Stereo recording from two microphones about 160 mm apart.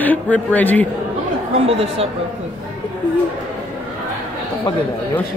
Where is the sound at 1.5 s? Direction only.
35° right (ahead or behind).